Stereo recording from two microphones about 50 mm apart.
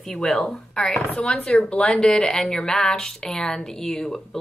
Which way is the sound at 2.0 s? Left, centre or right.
Centre.